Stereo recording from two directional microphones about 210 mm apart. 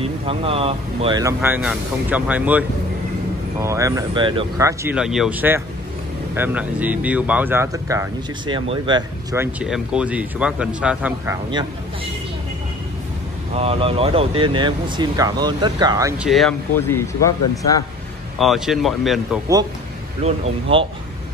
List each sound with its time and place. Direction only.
0.0 s speech: 25° right (ahead or behind); by 2.6 s 5° right (ahead or behind)
3.6 s speech: 15° right (ahead or behind)
4.9 s speech: centre (ahead or behind)
13.6 s speech: 25° right (ahead or behind)
16.2 s speech: centre (ahead or behind)
16.7 s speech: 10° left (ahead or behind)
18.4 s speech: centre (ahead or behind)
20.2 s speech: 30° right (ahead or behind)